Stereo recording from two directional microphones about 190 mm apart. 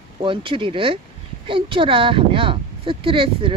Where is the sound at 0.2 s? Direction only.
25° right (ahead or behind).